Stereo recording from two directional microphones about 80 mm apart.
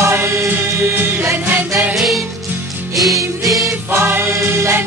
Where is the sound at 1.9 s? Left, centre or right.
Centre.